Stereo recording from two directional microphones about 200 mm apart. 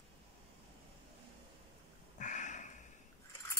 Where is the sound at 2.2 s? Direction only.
40° left (ahead or behind).